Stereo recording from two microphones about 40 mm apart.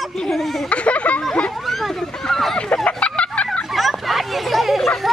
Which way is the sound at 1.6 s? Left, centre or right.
Centre.